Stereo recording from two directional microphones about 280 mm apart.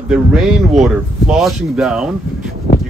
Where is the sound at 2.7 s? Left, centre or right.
Left.